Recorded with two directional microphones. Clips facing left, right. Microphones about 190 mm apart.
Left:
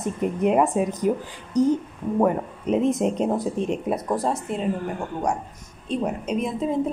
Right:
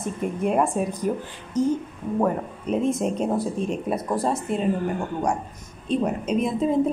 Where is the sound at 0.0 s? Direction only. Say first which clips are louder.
Left 3 dB; 20° left (ahead or behind).